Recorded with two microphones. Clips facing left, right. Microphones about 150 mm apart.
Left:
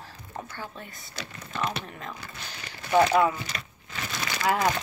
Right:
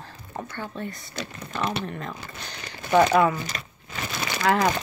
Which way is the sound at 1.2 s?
35° right (ahead or behind).